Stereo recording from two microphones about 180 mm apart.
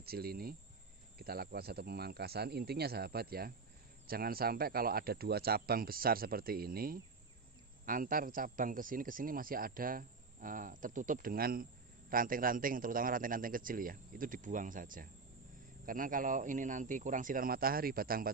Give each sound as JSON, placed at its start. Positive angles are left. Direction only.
{"t": 0.0, "sound": "speech", "side_deg": -60}